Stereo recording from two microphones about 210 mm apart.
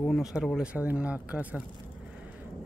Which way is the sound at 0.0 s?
Centre (ahead or behind).